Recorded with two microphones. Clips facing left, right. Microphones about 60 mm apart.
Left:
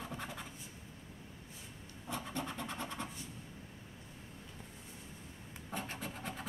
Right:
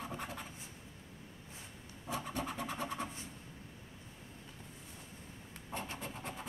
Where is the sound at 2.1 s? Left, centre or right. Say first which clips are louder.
Right 2 dB; centre.